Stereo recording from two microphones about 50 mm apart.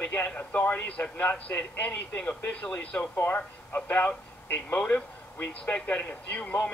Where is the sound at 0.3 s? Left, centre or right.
Left.